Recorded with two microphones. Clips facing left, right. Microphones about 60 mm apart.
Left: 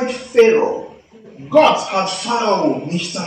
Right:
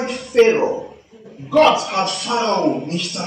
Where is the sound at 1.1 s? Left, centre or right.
Left.